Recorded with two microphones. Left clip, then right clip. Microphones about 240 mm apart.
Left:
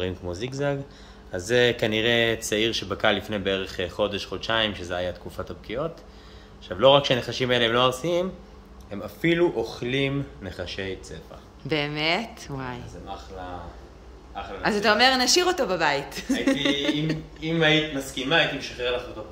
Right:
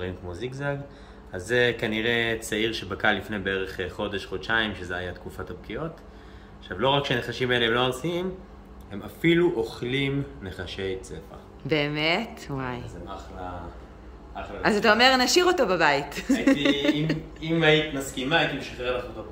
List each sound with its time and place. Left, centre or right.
0.0 s speech: left; by 11.1 s centre
11.6 s a woman's voice: centre
14.3 s a woman's voice: centre